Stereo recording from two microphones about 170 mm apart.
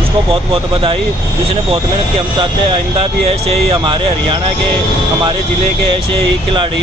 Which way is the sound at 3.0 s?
35° right (ahead or behind).